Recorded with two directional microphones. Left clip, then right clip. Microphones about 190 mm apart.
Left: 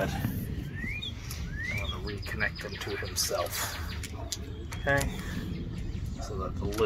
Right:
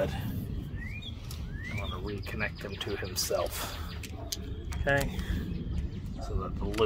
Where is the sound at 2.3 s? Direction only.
45° right (ahead or behind).